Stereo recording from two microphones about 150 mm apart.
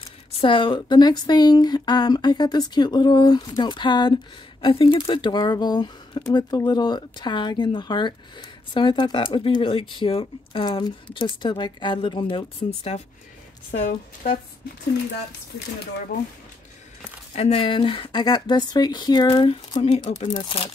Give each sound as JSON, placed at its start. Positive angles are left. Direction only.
{"t": 0.4, "sound": "a woman's voice", "side_deg": 35}
{"t": 13.7, "sound": "a woman's voice", "side_deg": 65}
{"t": 17.4, "sound": "speech", "side_deg": 35}